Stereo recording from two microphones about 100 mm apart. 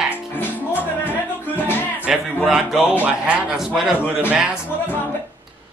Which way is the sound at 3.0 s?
15° right (ahead or behind).